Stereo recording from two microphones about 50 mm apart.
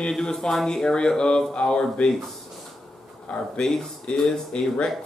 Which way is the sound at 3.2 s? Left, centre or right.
Centre.